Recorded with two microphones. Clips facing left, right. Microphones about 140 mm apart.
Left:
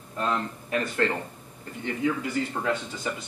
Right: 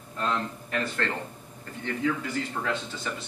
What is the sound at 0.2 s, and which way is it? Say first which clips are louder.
Speech: left 1 dB; 10° left (ahead or behind).